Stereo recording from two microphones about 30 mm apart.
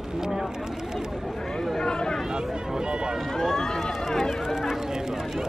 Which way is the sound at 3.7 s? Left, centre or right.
Centre.